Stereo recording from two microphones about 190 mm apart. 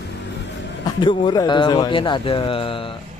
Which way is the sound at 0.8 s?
25° left (ahead or behind).